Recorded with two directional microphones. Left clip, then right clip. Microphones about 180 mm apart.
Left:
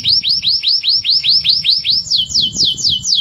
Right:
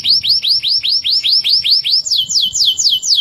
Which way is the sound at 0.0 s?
15° right (ahead or behind).